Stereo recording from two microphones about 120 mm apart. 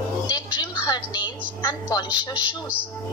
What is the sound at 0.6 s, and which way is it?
A woman's voice, 35° left (ahead or behind).